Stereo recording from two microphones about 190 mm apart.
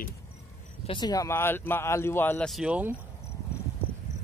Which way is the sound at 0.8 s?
20° left (ahead or behind).